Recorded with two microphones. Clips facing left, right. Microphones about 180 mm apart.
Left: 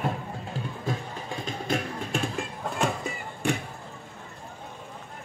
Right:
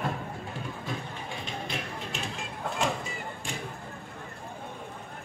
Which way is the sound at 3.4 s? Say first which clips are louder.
Left 14 dB; 65° left (ahead or behind).